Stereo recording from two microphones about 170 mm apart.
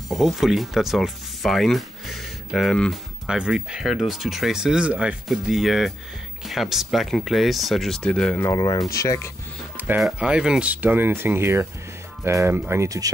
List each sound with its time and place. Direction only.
0.1 s speech: centre (ahead or behind)
8.5 s speech: 25° left (ahead or behind)
9.8 s speech: 5° right (ahead or behind)